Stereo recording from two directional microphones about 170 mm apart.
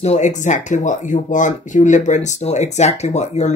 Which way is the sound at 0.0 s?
45° left (ahead or behind).